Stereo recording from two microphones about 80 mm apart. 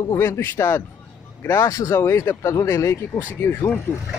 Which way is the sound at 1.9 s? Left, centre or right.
Left.